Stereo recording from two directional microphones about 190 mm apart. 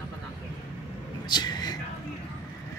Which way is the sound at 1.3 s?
20° left (ahead or behind).